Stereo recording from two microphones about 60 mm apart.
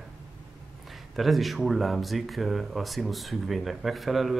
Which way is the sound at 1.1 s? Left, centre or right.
Centre.